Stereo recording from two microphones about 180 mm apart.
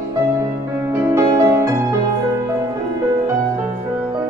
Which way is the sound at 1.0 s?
15° right (ahead or behind).